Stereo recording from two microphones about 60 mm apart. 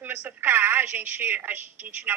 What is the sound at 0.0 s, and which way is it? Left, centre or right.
A woman's voice, right.